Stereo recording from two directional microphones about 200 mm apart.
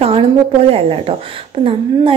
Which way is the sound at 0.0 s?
30° right (ahead or behind).